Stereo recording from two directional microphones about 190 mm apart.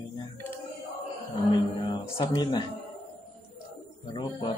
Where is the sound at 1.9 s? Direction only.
25° left (ahead or behind).